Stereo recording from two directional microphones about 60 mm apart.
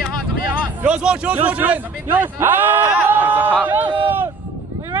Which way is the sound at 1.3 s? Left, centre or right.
Right.